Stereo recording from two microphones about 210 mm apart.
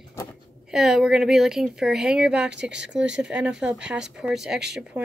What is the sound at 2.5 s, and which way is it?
Speech, 55° right (ahead or behind).